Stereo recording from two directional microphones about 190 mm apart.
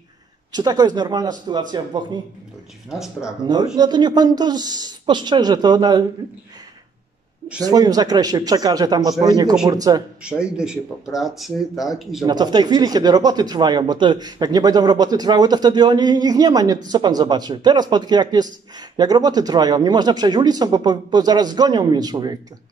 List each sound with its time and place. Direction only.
0.5 s speech: 20° right (ahead or behind)
2.9 s speech: 5° right (ahead or behind)
3.4 s speech: 20° right (ahead or behind)
7.6 s speech: 20° right (ahead or behind)
10.2 s speech: 5° right (ahead or behind)
12.3 s speech: 20° right (ahead or behind)